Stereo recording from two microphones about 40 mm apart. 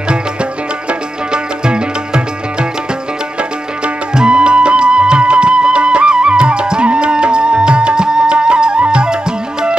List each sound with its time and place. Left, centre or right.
0.1 s music: right